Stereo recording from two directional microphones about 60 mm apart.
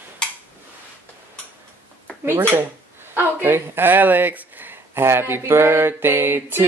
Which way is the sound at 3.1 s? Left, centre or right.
Right.